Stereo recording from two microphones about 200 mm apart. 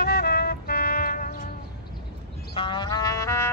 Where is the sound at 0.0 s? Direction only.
50° left (ahead or behind).